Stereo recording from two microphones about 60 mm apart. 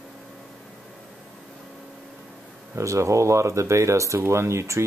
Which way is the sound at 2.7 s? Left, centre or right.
Right.